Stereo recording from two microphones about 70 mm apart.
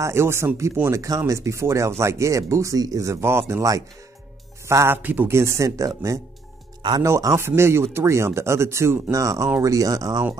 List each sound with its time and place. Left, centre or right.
0.0 s speech: right
0.9 s a man's voice: right
4.9 s a man's voice: right
5.3 s speech: right